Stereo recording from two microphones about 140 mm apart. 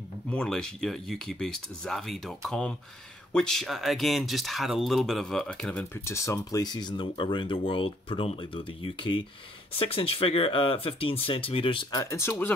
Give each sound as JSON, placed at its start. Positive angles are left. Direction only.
{"t": 0.3, "sound": "speech", "side_deg": 5}
{"t": 5.9, "sound": "speech", "side_deg": 20}
{"t": 12.0, "sound": "speech", "side_deg": 20}